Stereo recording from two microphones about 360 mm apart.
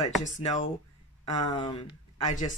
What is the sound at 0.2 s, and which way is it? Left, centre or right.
Speech, centre.